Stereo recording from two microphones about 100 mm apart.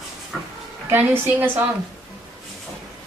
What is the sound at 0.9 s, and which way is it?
Speech, 20° right (ahead or behind).